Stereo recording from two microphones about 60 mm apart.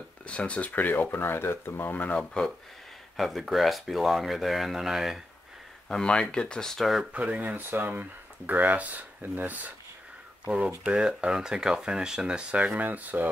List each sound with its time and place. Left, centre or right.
0.3 s speech: left
2.1 s speech: centre
3.2 s speech: centre
5.9 s speech: centre
7.1 s speech: right